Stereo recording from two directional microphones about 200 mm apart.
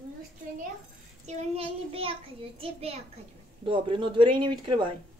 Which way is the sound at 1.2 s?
30° right (ahead or behind).